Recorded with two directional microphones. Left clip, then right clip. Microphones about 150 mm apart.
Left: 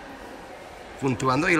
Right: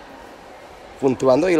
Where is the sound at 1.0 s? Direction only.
15° right (ahead or behind).